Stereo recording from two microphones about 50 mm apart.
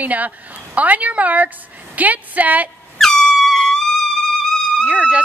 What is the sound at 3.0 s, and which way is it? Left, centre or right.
Air horn, centre.